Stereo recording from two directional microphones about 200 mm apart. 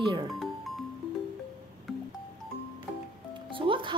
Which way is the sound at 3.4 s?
25° right (ahead or behind).